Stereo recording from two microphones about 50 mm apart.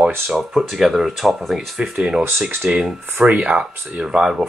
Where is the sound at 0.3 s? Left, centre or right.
Centre.